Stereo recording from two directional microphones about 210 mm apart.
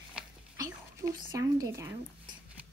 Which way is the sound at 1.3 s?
15° right (ahead or behind).